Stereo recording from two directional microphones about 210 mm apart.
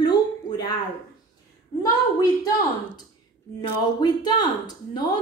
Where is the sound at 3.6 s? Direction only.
20° left (ahead or behind).